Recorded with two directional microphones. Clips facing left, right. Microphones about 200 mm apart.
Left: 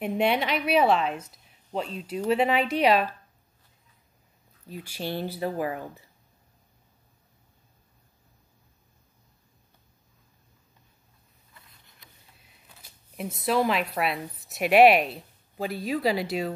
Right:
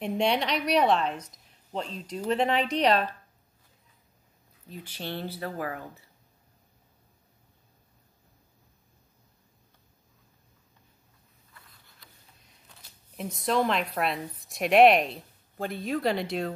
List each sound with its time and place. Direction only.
0.0 s a woman's voice: 5° left (ahead or behind)
4.6 s a woman's voice: 10° left (ahead or behind)
11.5 s a sound: 25° left (ahead or behind)
12.4 s speech: 10° left (ahead or behind)